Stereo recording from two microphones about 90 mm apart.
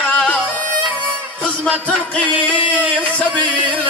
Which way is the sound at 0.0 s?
15° left (ahead or behind).